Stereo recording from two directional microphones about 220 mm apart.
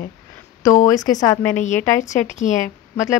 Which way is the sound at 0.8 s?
15° left (ahead or behind).